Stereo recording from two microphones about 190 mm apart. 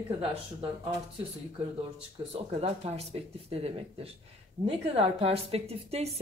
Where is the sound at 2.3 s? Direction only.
35° right (ahead or behind).